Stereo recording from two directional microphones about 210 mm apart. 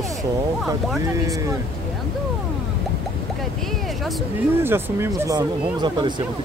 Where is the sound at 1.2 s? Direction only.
15° right (ahead or behind).